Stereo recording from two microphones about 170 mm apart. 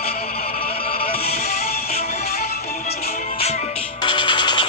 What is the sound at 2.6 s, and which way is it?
Music, 65° left (ahead or behind).